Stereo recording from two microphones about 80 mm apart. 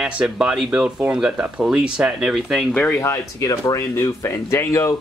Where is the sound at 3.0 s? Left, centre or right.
Left.